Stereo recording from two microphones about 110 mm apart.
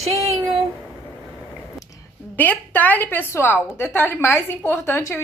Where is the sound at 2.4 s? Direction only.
15° left (ahead or behind).